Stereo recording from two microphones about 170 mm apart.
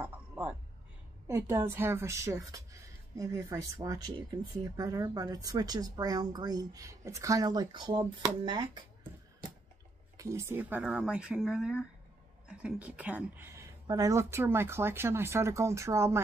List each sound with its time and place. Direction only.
0.0 s a sound: 10° right (ahead or behind)
1.2 s speech: 15° right (ahead or behind)
10.1 s speech: 15° right (ahead or behind)
13.8 s speech: 20° right (ahead or behind)